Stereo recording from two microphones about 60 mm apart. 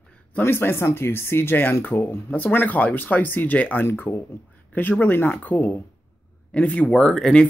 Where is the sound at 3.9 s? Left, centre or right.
Left.